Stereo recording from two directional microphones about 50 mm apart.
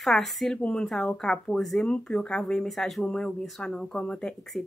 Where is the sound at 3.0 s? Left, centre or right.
Centre.